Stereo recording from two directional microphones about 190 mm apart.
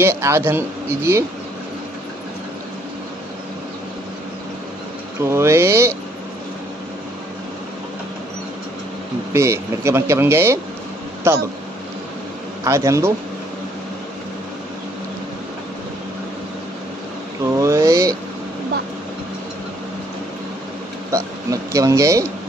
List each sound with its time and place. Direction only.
0.0 s speech: 15° right (ahead or behind)
5.2 s speech: 15° right (ahead or behind)
9.3 s speech: 15° right (ahead or behind)
12.6 s speech: 15° right (ahead or behind)
17.6 s a sound: 15° right (ahead or behind)
21.1 s a sound: 15° right (ahead or behind)